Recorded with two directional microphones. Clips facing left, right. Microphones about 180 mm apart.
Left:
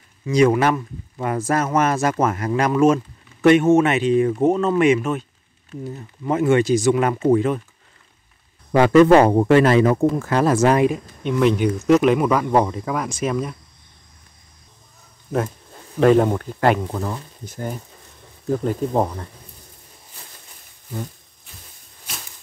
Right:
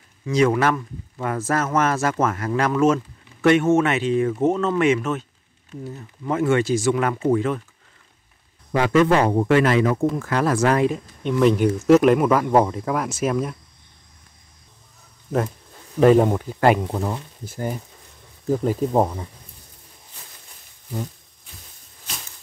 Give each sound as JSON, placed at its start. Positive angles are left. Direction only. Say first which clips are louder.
{"t": 0.3, "sound": "speech", "louder": "left 2 dB", "side_deg": 15}
{"t": 8.7, "sound": "a man's voice", "louder": "left 6 dB", "side_deg": 40}
{"t": 11.2, "sound": "speech", "louder": "even", "side_deg": 0}
{"t": 16.0, "sound": "speech", "louder": "even", "side_deg": -5}